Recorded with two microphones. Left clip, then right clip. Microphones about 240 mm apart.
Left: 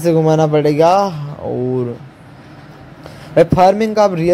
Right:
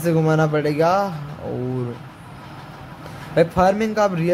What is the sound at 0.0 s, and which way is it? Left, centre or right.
Speech, centre.